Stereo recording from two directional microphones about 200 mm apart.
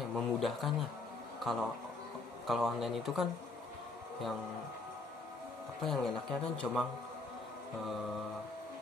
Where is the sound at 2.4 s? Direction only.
Centre (ahead or behind).